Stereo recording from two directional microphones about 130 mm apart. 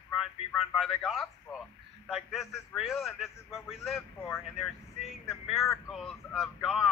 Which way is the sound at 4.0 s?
20° left (ahead or behind).